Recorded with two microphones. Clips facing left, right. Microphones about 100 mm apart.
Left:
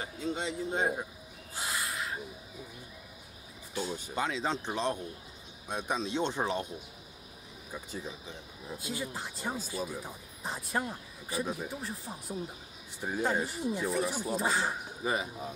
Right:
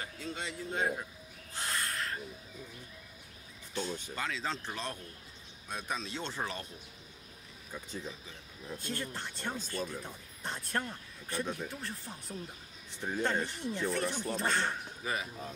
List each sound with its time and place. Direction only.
0.0 s speech: 20° left (ahead or behind)
1.5 s owl: 5° left (ahead or behind)
3.7 s speech: 10° left (ahead or behind)
8.6 s speech: 5° left (ahead or behind)
15.0 s speech: 20° left (ahead or behind)